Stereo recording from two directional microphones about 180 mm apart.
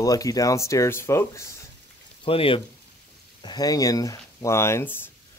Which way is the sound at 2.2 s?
30° left (ahead or behind).